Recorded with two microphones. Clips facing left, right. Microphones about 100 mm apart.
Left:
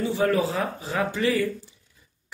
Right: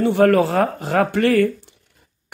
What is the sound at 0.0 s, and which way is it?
Speech, 60° right (ahead or behind).